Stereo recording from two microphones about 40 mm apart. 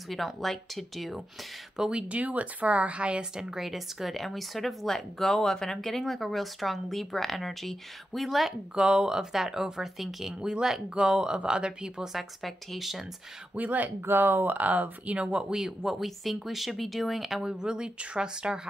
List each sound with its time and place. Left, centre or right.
0.1 s speech: centre
1.8 s speech: right
2.0 s speech: right
3.3 s speech: centre
8.5 s speech: centre
12.1 s speech: centre
13.6 s speech: right
14.0 s speech: right
15.5 s speech: centre
17.4 s speech: centre